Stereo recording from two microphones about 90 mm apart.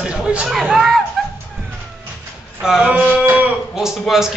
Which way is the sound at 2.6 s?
5° right (ahead or behind).